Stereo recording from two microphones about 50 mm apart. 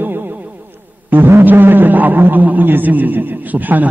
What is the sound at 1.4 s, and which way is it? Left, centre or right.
A man's voice, right.